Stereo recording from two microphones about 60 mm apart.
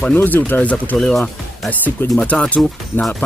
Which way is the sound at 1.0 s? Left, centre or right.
Centre.